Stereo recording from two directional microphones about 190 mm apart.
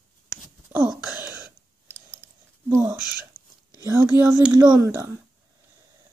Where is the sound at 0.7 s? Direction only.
10° right (ahead or behind).